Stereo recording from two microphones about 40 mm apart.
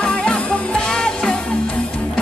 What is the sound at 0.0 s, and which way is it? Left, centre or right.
Music, left.